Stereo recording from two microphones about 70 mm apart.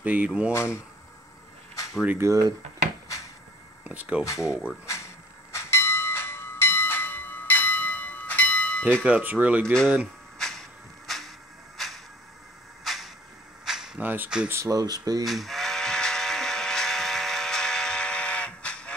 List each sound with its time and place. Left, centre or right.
0.0 s speech: right
0.5 s speech: left
2.1 s speech: right
3.8 s speech: centre
4.2 s speech: left
4.5 s speech: centre
4.8 s bell: left; by 8.8 s centre
9.0 s speech: right
10.4 s a sound: centre
14.0 s speech: right
14.5 s speech: right
14.8 s speech: right
15.2 s a sound: centre